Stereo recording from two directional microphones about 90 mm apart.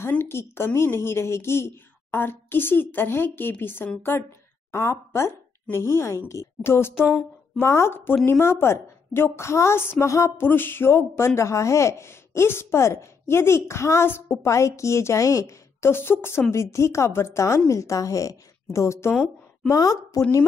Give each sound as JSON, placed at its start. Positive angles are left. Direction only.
{"t": 0.1, "sound": "a woman's voice", "side_deg": 25}
{"t": 19.1, "sound": "a woman's voice", "side_deg": 5}
{"t": 19.7, "sound": "a woman's voice", "side_deg": 40}